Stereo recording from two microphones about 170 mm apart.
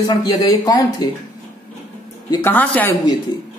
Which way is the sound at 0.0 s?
25° left (ahead or behind).